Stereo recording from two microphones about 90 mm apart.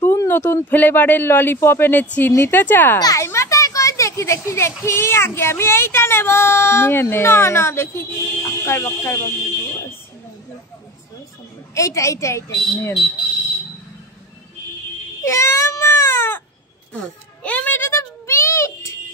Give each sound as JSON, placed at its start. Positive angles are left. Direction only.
{"t": 0.0, "sound": "speech", "side_deg": 25}
{"t": 3.2, "sound": "a child's voice", "side_deg": 35}
{"t": 11.7, "sound": "a woman's voice", "side_deg": 35}
{"t": 15.2, "sound": "baby cry", "side_deg": 30}
{"t": 16.9, "sound": "a sound", "side_deg": 10}